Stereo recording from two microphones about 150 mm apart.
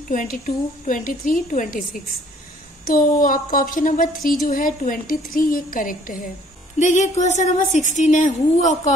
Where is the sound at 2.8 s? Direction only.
65° left (ahead or behind).